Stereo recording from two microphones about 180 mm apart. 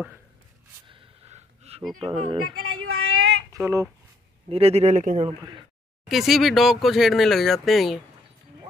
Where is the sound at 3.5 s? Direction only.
15° right (ahead or behind).